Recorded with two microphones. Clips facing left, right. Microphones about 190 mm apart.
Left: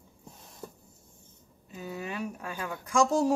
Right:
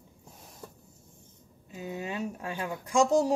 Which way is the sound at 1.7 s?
20° right (ahead or behind).